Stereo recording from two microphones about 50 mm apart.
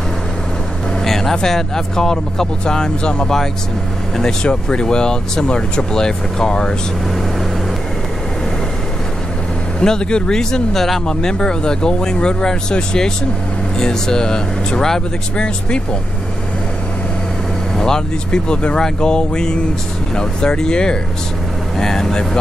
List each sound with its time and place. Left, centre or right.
1.0 s speech: centre
9.8 s speech: centre
17.7 s speech: centre